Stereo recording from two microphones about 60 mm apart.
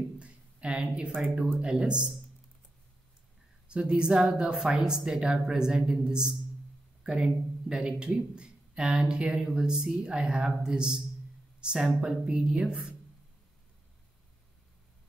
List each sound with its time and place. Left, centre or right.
0.2 s a sound: centre
1.1 s speech: right
3.6 s a man's voice: centre